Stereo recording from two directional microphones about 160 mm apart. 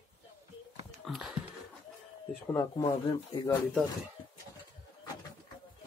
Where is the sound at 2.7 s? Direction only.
25° left (ahead or behind).